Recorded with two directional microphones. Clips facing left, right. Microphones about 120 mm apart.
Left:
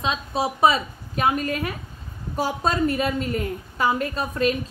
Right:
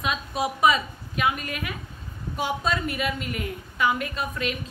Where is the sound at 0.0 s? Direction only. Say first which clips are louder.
Left 2 dB; 30° left (ahead or behind).